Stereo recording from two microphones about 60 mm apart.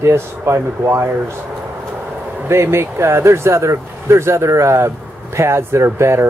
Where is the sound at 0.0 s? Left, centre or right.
Right.